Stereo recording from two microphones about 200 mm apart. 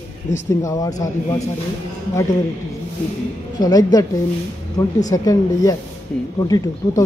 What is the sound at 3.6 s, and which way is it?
A woman's voice, 20° left (ahead or behind).